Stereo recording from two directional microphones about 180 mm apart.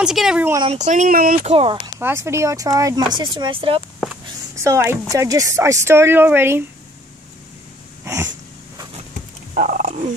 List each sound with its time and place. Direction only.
0.0 s speech: 5° right (ahead or behind)
0.7 s speech: 40° right (ahead or behind)
1.4 s speech: 30° right (ahead or behind)
2.0 s speech: 15° right (ahead or behind); by 3.8 s 30° right (ahead or behind)
4.6 s speech: 15° right (ahead or behind)
8.0 s a sound: 15° right (ahead or behind)
9.5 s turkey: 45° right (ahead or behind)